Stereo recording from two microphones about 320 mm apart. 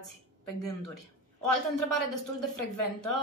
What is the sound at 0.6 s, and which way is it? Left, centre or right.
Speech, left.